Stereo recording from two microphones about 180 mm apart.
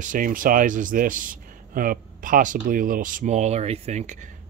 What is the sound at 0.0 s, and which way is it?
A man's voice, 50° right (ahead or behind).